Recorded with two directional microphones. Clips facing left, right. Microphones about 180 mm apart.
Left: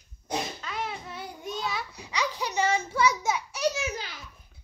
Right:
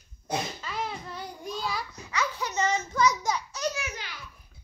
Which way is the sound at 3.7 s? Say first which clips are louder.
Left 4 dB; 25° left (ahead or behind).